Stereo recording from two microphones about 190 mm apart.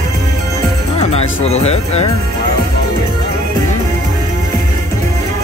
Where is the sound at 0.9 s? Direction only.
35° left (ahead or behind).